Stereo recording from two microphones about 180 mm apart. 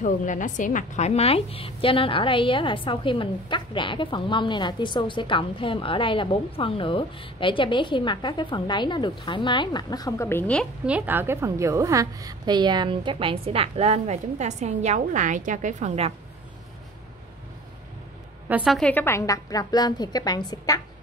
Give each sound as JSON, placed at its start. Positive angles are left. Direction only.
{"t": 0.0, "sound": "a woman's voice", "side_deg": 45}
{"t": 10.9, "sound": "a woman's voice", "side_deg": -10}
{"t": 18.5, "sound": "a woman's voice", "side_deg": -5}